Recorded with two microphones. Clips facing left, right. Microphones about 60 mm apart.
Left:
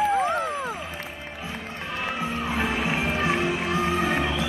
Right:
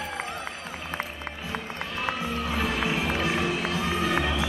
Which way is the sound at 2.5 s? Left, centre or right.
Left.